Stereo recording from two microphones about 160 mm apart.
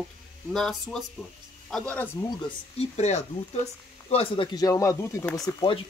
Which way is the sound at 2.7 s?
40° left (ahead or behind).